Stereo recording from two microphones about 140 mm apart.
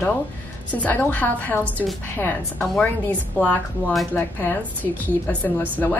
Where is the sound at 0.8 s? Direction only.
15° left (ahead or behind).